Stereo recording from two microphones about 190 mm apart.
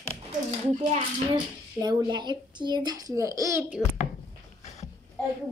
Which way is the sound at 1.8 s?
25° right (ahead or behind).